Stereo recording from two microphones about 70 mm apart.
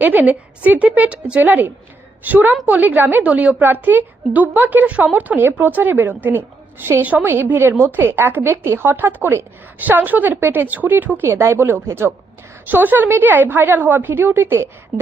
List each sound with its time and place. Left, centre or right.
0.0 s a woman's voice: right